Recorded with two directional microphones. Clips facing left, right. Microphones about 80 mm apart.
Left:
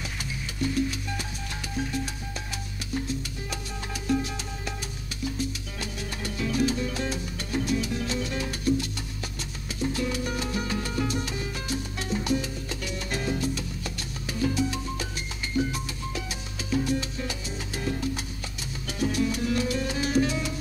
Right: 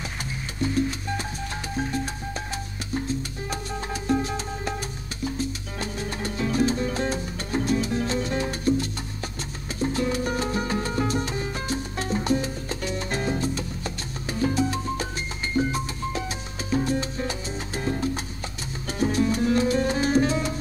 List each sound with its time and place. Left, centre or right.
0.6 s music: right